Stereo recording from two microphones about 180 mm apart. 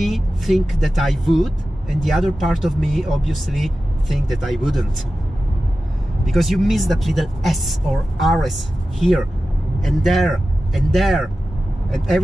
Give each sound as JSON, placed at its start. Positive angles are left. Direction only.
{"t": 0.0, "sound": "speech", "side_deg": 0}
{"t": 6.2, "sound": "speech", "side_deg": 0}